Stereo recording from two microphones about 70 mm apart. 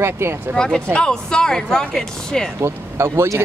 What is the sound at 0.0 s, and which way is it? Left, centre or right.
Speech, right.